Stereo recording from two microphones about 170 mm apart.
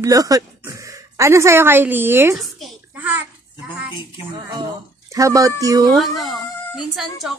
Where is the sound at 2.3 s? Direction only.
Centre (ahead or behind).